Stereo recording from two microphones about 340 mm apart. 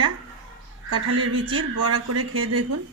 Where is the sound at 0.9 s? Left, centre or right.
Right.